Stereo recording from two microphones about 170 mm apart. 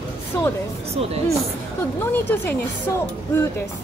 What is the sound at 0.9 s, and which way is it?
Speech, 35° right (ahead or behind).